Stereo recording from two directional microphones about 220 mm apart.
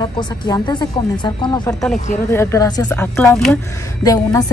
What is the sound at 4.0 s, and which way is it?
Speech, 15° left (ahead or behind).